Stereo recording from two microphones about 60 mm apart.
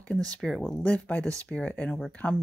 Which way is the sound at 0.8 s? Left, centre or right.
Left.